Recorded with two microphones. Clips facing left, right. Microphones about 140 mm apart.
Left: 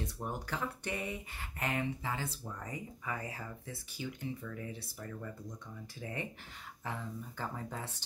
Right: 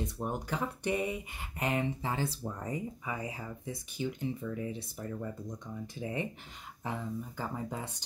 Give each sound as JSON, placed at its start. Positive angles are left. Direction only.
{"t": 0.0, "sound": "speech", "side_deg": -20}